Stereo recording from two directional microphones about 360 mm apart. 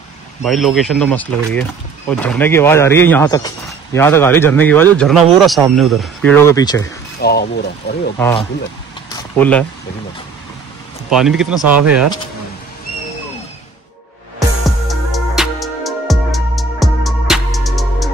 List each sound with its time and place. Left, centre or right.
0.4 s speech: centre
7.2 s speech: left
8.2 s speech: centre
9.1 s vehicle: centre
11.1 s speech: centre
14.9 s music: centre